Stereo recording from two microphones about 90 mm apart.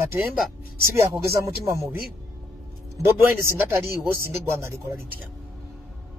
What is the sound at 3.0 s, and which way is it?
A man's voice, 25° right (ahead or behind).